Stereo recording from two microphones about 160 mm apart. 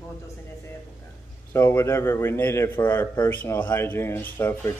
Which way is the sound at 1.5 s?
15° left (ahead or behind).